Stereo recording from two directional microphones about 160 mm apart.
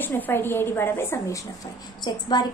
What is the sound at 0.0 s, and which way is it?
A woman's voice, 15° left (ahead or behind).